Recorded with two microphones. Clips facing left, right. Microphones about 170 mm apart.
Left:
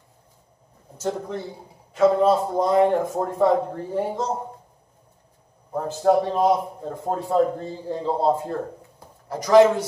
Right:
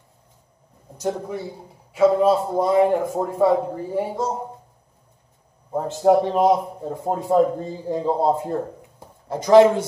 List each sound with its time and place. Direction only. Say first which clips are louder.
0.9 s a man's voice: right 1 dB; 10° right (ahead or behind)
5.7 s a man's voice: right 3 dB; 20° right (ahead or behind)
9.3 s a man's voice: right 2 dB; 25° right (ahead or behind)